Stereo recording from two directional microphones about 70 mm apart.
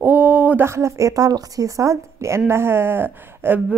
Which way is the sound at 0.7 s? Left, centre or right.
Right.